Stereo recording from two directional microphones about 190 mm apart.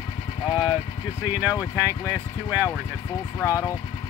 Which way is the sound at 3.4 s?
15° left (ahead or behind).